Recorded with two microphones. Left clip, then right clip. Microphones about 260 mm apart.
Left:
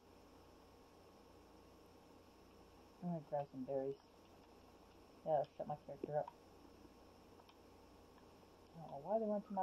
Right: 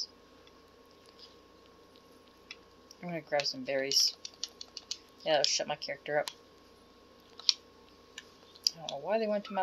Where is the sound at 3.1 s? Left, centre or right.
Right.